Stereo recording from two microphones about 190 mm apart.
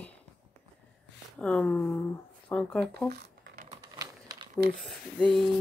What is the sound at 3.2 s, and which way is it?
Typing, 60° right (ahead or behind).